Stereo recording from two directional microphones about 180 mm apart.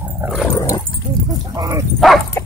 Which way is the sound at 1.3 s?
20° right (ahead or behind).